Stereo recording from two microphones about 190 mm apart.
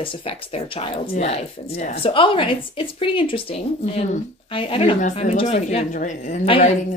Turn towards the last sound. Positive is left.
turn(degrees=30)  # may be behind; listen again after turning